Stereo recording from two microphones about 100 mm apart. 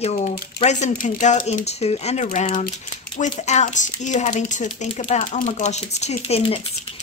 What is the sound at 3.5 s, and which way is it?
Speech, 90° left.